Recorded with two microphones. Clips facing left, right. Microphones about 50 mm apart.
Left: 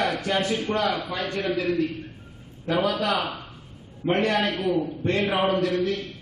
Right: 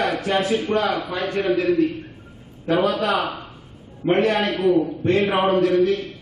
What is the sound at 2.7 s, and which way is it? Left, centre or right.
Speech, right.